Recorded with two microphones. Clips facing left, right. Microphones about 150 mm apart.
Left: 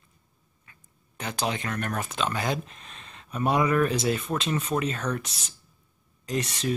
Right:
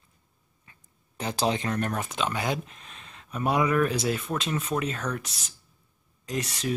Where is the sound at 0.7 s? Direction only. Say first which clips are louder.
Even; 30° right (ahead or behind).